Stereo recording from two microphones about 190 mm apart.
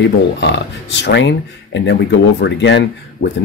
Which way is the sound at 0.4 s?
65° left (ahead or behind).